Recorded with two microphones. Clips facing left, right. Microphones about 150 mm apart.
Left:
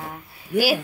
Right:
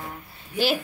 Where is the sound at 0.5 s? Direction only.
60° left (ahead or behind).